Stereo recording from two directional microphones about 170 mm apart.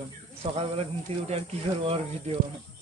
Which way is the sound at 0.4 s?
35° right (ahead or behind).